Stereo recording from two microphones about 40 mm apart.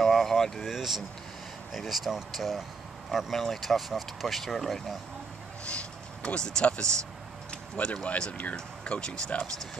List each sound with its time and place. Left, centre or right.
0.0 s a sound: centre
0.6 s speech: centre
5.7 s vehicle: left
6.8 s speech: left